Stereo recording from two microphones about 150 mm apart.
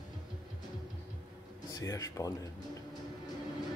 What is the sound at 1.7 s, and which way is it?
Speech, 25° left (ahead or behind).